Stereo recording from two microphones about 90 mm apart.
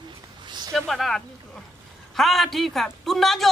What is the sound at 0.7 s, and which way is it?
A man's voice, centre (ahead or behind).